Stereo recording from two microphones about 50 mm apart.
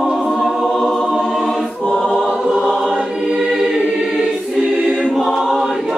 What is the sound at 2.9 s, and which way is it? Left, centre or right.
Choir, centre.